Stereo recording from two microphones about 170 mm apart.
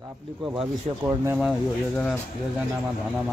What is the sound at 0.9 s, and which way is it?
Speech, 35° right (ahead or behind).